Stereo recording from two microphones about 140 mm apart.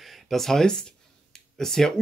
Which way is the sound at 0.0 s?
Centre (ahead or behind).